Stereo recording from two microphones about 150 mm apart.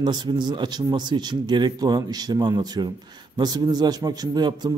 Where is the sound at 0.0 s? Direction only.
30° right (ahead or behind).